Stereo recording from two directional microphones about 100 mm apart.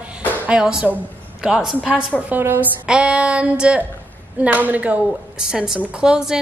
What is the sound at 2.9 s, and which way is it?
A woman's voice, 10° right (ahead or behind).